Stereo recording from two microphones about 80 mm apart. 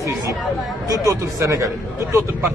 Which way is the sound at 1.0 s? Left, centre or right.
Right.